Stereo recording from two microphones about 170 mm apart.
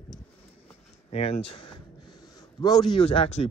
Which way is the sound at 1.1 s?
35° left (ahead or behind).